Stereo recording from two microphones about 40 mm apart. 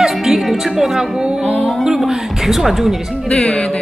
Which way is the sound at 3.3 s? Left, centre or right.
Left.